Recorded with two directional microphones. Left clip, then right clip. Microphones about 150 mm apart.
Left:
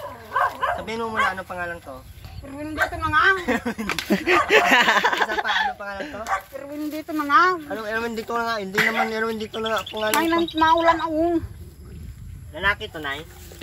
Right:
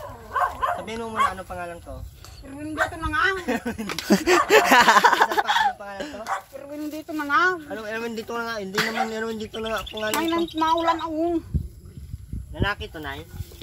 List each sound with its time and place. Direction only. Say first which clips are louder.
0.3 s dog: left 1 dB; 90° right
0.8 s speech: left 1 dB; 10° right (ahead or behind)
3.0 s a woman's voice: left 6 dB; centre (ahead or behind)
3.3 s speech: left 3 dB; 20° right (ahead or behind)
4.1 s speech: right 1 dB; 35° right (ahead or behind)
6.6 s speech: left 3 dB; 10° left (ahead or behind)
7.6 s speech: left 4 dB; 10° right (ahead or behind)
8.9 s speech: left 3 dB; 25° right (ahead or behind)
9.5 s speech: left 3 dB; 10° right (ahead or behind)
10.2 s speech: left 4 dB; 10° left (ahead or behind)
12.5 s speech: left 5 dB; 25° right (ahead or behind)